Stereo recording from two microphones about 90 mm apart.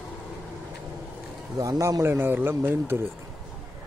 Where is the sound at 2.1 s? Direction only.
25° right (ahead or behind).